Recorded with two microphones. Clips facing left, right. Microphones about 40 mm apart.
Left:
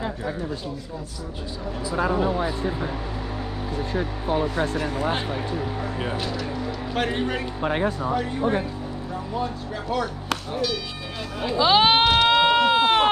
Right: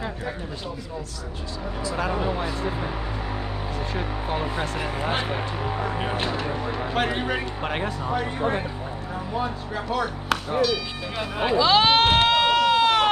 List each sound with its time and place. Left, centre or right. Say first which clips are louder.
4.3 s speech: left 5 dB; right
6.1 s speech: right 2 dB; right
6.9 s speech: even; centre
11.1 s speech: right 4 dB; right
11.5 s speech: left 1 dB; centre
12.0 s a sound: even; right
12.3 s sheep: left 1 dB; centre